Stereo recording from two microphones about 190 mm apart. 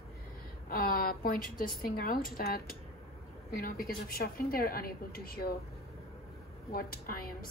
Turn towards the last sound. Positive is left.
turn(degrees=50)  # may be behind; listen again after turning